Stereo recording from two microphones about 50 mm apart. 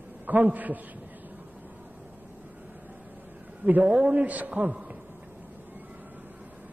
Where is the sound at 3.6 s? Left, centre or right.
Right.